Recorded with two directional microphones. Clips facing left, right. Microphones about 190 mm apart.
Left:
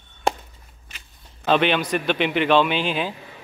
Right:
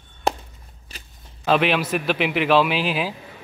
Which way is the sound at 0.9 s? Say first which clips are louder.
Right 5 dB; 35° right (ahead or behind).